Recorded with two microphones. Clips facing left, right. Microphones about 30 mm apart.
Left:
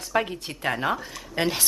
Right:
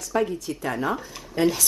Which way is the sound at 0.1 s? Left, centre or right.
Left.